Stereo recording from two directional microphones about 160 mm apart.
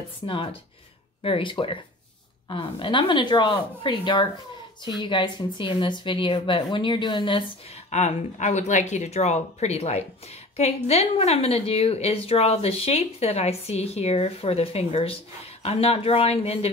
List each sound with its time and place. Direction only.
0.3 s a woman's voice: 35° left (ahead or behind)